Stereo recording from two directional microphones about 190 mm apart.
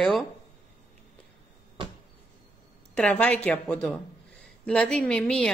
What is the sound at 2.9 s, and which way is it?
A woman's voice, 5° left (ahead or behind).